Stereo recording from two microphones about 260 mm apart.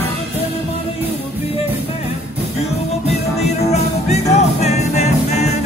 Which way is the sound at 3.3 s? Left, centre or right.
Left.